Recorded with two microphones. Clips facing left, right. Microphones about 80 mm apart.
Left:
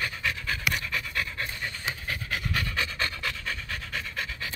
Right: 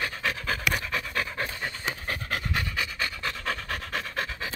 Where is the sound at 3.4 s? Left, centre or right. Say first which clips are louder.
Right 3 dB; right.